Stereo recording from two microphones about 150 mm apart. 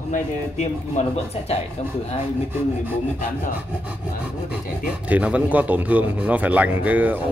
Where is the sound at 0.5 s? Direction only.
50° left (ahead or behind).